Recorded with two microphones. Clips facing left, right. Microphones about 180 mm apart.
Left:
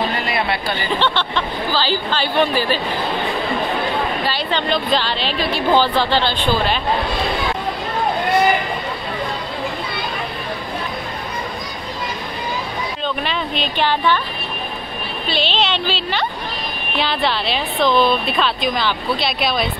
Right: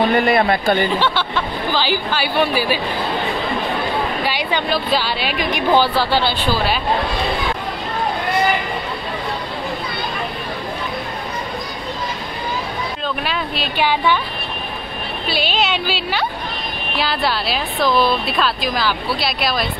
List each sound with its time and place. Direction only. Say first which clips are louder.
0.1 s speech: right 6 dB; 50° right (ahead or behind)
0.9 s a woman's voice: even; 10° right (ahead or behind)
4.2 s a woman's voice: even; 15° right (ahead or behind)
13.2 s a woman's voice: left 1 dB; 5° right (ahead or behind)
15.2 s a woman's voice: even; 10° right (ahead or behind)